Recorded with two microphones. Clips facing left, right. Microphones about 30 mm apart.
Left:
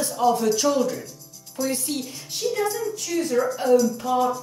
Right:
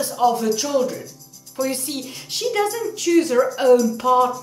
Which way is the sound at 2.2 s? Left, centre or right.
Right.